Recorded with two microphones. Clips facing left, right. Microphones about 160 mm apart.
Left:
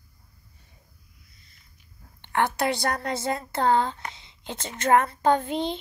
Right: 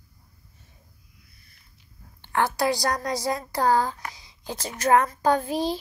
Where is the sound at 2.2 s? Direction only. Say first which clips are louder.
Right 1 dB; 60° left (ahead or behind).